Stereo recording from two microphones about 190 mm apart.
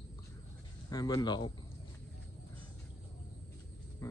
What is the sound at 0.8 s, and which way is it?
Speech, 20° left (ahead or behind).